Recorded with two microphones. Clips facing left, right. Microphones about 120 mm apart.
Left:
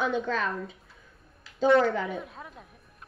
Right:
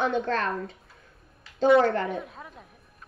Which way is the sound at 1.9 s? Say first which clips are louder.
Right 2 dB; centre (ahead or behind).